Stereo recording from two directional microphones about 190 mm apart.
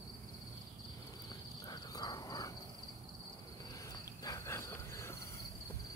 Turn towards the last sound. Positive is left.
turn(degrees=15)  # may be behind; listen again after turning